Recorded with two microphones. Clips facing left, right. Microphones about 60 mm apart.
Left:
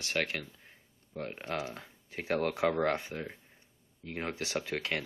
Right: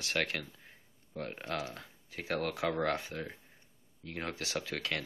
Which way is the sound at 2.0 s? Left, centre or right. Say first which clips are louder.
Left 4 dB; left.